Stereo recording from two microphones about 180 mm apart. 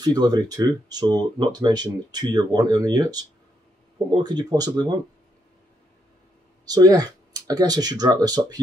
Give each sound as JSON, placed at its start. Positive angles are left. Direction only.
{"t": 0.0, "sound": "speech", "side_deg": -20}
{"t": 6.6, "sound": "speech", "side_deg": -20}